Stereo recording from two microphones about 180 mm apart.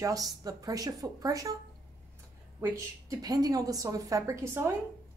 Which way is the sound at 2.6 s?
20° right (ahead or behind).